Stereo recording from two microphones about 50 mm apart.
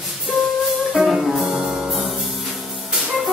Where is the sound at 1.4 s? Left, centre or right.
Centre.